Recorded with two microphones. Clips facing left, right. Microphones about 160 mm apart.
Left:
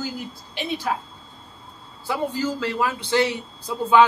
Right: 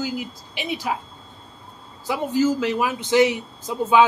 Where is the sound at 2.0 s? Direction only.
15° right (ahead or behind).